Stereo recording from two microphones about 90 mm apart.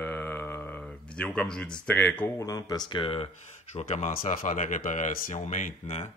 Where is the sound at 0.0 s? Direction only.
20° left (ahead or behind).